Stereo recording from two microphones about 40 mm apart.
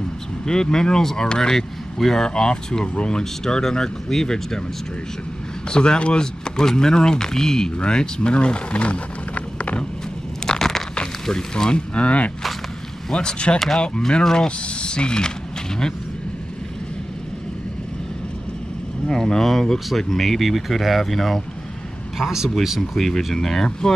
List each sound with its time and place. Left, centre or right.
0.5 s speech: centre
5.7 s speech: left
10.4 s a sound: centre
11.2 s speech: centre; by 12.3 s left
13.1 s speech: left
19.0 s speech: centre
22.2 s speech: centre
22.8 s speech: centre